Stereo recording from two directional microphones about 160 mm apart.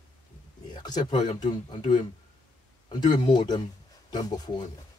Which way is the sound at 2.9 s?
25° left (ahead or behind).